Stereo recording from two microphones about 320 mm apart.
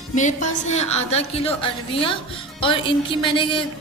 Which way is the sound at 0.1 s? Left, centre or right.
Left.